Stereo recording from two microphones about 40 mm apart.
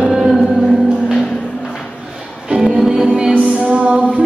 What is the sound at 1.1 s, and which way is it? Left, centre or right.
Music, centre.